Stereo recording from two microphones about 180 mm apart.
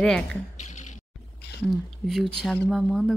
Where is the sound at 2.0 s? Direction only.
Centre (ahead or behind).